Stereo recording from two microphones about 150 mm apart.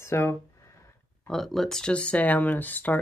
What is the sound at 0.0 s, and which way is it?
Speech, 15° left (ahead or behind).